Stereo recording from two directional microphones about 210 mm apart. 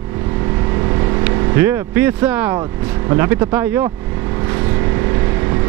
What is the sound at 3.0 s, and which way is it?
Speech, 10° right (ahead or behind).